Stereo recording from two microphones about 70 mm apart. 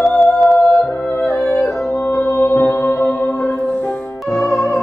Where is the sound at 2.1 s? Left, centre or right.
Left.